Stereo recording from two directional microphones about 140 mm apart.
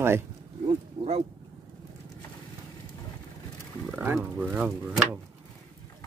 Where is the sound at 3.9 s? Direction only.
15° right (ahead or behind).